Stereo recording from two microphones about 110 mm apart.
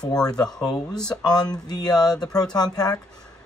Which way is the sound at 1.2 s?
40° left (ahead or behind).